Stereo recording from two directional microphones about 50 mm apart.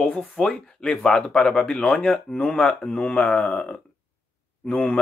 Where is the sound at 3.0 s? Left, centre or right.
Left.